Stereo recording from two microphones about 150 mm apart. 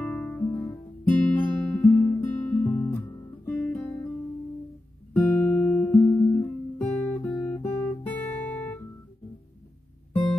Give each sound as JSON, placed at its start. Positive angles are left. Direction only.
{"t": 0.0, "sound": "music", "side_deg": 10}
{"t": 0.6, "sound": "guitar", "side_deg": 10}
{"t": 5.1, "sound": "guitar", "side_deg": 15}
{"t": 7.3, "sound": "guitar", "side_deg": 15}